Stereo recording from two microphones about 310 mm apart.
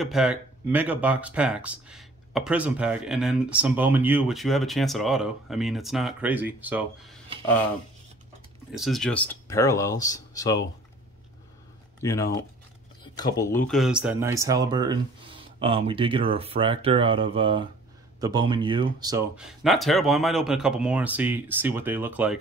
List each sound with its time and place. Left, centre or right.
0.0 s speech: centre
8.7 s speech: centre
12.0 s speech: centre